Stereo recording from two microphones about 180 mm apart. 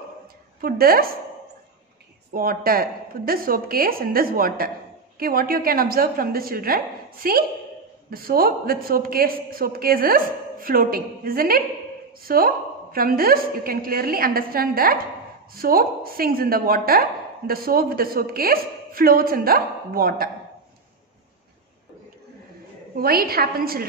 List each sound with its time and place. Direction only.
0.6 s a man's voice: 55° right (ahead or behind)
2.3 s a woman's voice: 55° right (ahead or behind)
22.9 s a man's voice: 60° right (ahead or behind)